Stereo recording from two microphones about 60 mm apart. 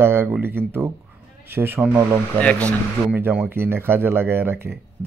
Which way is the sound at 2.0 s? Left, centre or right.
Right.